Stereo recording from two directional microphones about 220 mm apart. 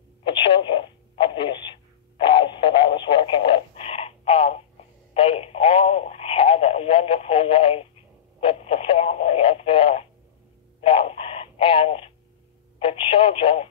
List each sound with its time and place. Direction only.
0.2 s telephone: 25° left (ahead or behind)
2.2 s radio: 25° left (ahead or behind)
10.8 s telephone: 25° left (ahead or behind)